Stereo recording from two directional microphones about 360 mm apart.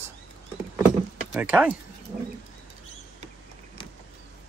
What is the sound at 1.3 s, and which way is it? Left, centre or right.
Speech, centre.